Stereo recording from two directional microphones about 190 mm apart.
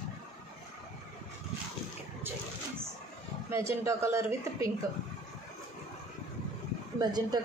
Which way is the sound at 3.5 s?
15° right (ahead or behind).